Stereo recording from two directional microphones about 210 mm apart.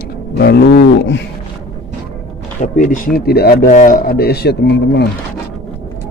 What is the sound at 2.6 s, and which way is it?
Speech, 35° left (ahead or behind).